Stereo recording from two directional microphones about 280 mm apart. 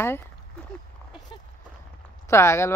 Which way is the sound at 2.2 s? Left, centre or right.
Centre.